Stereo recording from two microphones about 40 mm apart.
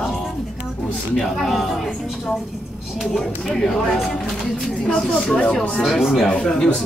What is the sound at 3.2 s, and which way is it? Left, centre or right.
A woman's voice, centre.